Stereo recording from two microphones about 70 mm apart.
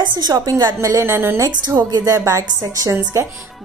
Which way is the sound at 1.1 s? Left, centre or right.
Right.